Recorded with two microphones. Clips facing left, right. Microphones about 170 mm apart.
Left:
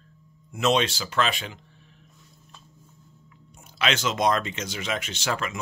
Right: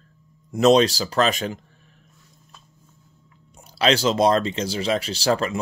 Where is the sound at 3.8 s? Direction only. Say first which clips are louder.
Right 6 dB; 35° right (ahead or behind).